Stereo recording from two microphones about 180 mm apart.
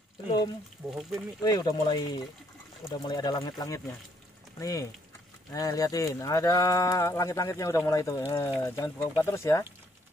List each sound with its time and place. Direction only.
0.8 s speech: 5° right (ahead or behind)
1.4 s speech: 20° left (ahead or behind)